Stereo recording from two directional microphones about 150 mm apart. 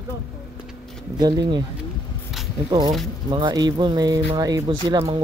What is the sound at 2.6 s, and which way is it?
Speech, 30° right (ahead or behind).